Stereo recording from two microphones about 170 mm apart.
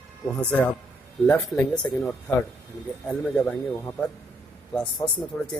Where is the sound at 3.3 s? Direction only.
10° left (ahead or behind).